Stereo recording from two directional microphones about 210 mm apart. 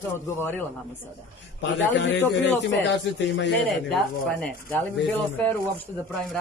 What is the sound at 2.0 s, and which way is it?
A man's voice, 55° left (ahead or behind).